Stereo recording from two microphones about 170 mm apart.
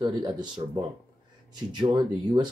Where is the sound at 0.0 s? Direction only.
25° right (ahead or behind).